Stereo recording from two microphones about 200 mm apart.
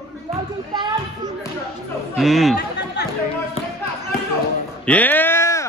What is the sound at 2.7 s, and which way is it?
Chatter, 55° left (ahead or behind).